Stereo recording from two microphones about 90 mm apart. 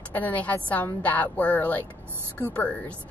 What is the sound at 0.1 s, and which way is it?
Speech, 15° left (ahead or behind).